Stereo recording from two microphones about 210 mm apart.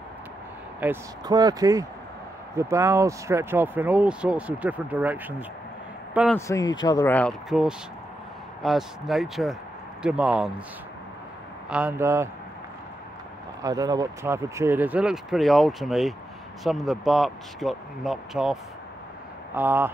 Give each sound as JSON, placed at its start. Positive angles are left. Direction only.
{"t": 0.7, "sound": "speech", "side_deg": -15}
{"t": 6.3, "sound": "speech", "side_deg": 15}
{"t": 7.2, "sound": "speech", "side_deg": 0}
{"t": 11.7, "sound": "speech", "side_deg": -10}
{"t": 13.6, "sound": "speech", "side_deg": -15}